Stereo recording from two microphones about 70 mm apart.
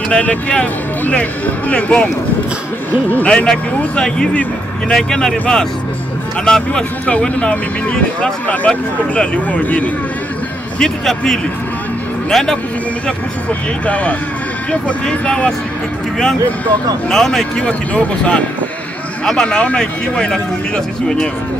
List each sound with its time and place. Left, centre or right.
0.1 s speech: centre
3.3 s speech: centre
6.4 s speech: centre
10.8 s a man's voice: centre
13.5 s speech: left
17.1 s speech: centre